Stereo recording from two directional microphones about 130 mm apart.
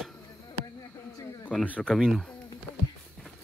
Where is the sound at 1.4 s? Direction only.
10° left (ahead or behind).